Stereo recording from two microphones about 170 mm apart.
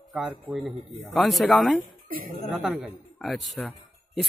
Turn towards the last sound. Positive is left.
turn(degrees=5)  # may be behind; listen again after turning